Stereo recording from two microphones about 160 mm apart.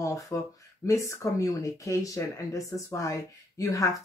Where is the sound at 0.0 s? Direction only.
20° left (ahead or behind).